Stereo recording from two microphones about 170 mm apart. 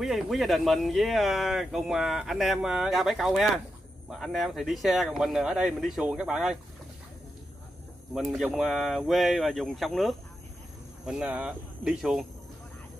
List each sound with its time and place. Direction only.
0.0 s speech: centre (ahead or behind)
8.4 s speech: centre (ahead or behind)